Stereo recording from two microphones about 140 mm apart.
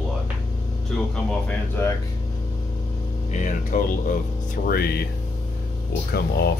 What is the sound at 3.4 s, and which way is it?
Speech, 70° left (ahead or behind).